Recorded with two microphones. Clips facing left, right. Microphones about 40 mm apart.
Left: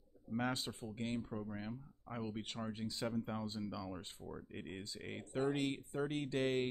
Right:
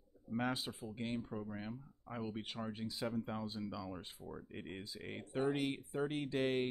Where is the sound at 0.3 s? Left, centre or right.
Centre.